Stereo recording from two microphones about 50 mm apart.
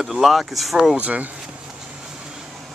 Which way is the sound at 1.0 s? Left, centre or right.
Right.